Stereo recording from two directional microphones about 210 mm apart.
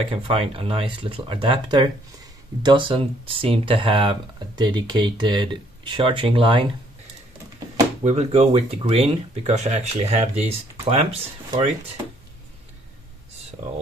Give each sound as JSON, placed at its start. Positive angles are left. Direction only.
{"t": 0.1, "sound": "speech", "side_deg": -25}
{"t": 8.0, "sound": "speech", "side_deg": -30}